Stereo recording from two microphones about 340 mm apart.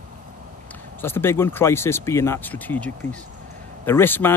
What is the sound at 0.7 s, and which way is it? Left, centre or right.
Speech, centre.